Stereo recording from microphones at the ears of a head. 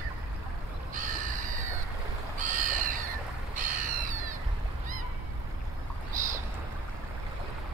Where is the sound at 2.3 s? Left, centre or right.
Right.